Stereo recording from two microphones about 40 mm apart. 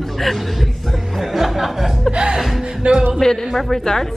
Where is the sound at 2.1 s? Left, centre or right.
Centre.